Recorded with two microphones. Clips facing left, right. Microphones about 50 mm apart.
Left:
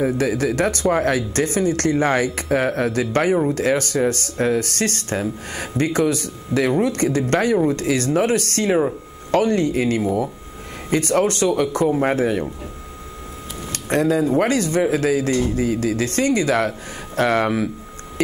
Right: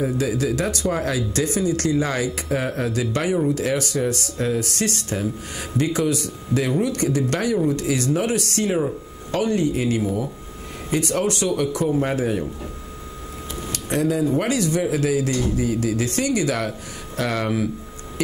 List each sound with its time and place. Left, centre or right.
0.0 s speech: left
13.7 s speech: left
15.3 s speech: left
15.6 s speech: left